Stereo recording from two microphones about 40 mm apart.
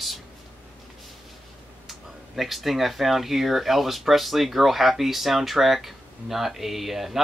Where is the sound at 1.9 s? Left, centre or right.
Centre.